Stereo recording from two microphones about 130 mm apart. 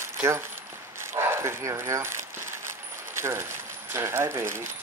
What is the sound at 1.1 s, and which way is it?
Speech, 20° right (ahead or behind).